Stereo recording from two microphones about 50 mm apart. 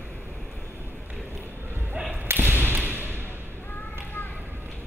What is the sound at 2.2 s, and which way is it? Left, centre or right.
Basketball bounce, right.